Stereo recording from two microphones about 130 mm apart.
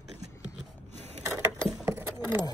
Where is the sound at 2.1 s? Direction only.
30° left (ahead or behind).